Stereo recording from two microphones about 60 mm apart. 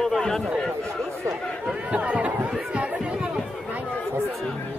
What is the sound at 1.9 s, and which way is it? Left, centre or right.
Chatter, right.